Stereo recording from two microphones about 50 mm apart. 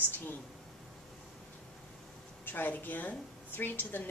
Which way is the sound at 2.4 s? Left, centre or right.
Left.